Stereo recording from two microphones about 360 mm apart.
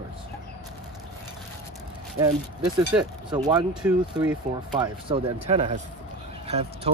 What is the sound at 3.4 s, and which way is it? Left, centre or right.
Speech, centre.